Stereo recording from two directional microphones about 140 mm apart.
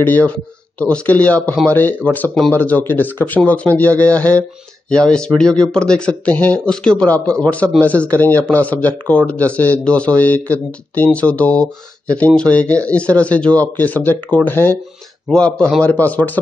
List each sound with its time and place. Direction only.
0.0 s speech: 10° left (ahead or behind)